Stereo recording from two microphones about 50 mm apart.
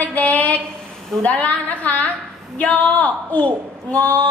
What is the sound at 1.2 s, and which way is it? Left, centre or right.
A woman's voice, left.